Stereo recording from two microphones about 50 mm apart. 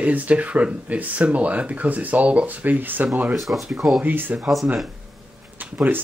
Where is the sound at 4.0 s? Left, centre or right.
Right.